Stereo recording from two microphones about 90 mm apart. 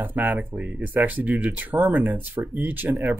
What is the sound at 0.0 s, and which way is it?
Speech, 20° right (ahead or behind).